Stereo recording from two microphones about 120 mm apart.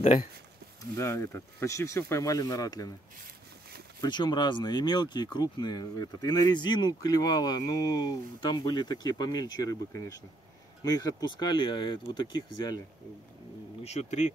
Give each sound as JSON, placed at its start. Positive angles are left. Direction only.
{"t": 0.9, "sound": "speech", "side_deg": 25}
{"t": 4.0, "sound": "speech", "side_deg": 35}
{"t": 13.8, "sound": "speech", "side_deg": 70}